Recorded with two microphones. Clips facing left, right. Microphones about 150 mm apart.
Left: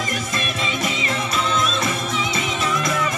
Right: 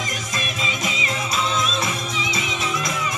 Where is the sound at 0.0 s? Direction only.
55° left (ahead or behind).